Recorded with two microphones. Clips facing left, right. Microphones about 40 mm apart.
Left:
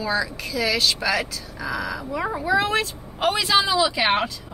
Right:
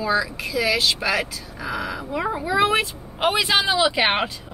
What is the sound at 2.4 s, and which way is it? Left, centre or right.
Speech, centre.